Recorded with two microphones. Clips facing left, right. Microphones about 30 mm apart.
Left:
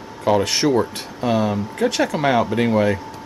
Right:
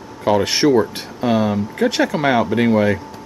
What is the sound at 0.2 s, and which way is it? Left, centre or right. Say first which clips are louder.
Speech: right 2 dB; centre.